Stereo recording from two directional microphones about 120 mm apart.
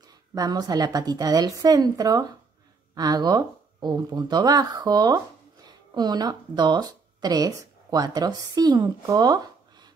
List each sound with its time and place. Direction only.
0.3 s a woman's voice: 30° right (ahead or behind)